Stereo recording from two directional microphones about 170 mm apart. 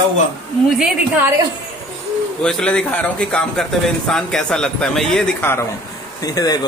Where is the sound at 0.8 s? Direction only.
10° right (ahead or behind).